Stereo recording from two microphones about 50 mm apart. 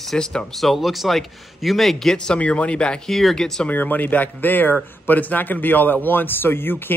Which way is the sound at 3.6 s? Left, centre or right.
Left.